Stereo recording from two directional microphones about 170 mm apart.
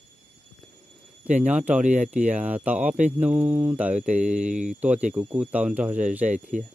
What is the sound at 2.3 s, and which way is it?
Speech, 10° right (ahead or behind).